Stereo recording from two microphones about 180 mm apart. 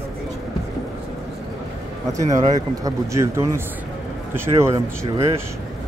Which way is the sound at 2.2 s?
20° right (ahead or behind).